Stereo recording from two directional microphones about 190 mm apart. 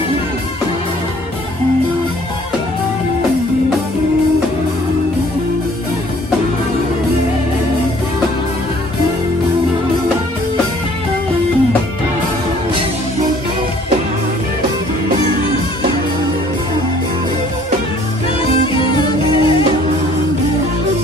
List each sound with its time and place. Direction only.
18.7 s music: 25° left (ahead or behind)